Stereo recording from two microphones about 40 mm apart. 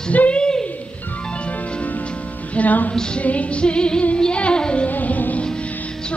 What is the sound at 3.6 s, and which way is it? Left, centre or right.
Music, left.